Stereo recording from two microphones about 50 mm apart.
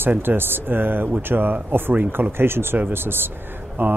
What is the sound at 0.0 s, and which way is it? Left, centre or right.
Speech, right.